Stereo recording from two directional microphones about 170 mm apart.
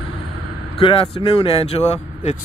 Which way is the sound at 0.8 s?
30° left (ahead or behind).